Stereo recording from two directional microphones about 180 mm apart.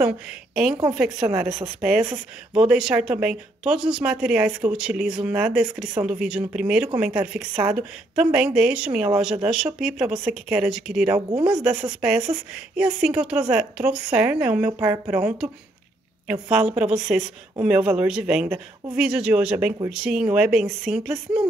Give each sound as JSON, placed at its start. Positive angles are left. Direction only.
{"t": 0.8, "sound": "a woman's voice", "side_deg": -5}
{"t": 11.3, "sound": "speech", "side_deg": -30}
{"t": 11.6, "sound": "a woman's voice", "side_deg": -5}